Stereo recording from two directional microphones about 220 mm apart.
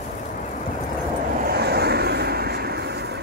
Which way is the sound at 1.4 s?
45° right (ahead or behind).